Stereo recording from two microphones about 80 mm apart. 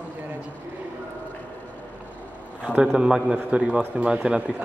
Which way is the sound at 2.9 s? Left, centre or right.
Centre.